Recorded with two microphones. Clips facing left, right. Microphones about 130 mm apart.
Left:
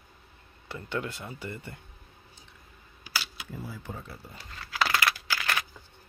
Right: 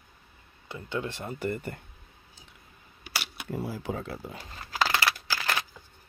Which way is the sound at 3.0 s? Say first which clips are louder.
Even; 60° right (ahead or behind).